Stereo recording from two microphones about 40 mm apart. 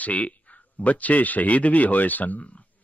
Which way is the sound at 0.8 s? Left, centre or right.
Left.